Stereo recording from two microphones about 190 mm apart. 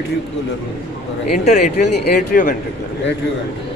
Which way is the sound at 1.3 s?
40° left (ahead or behind).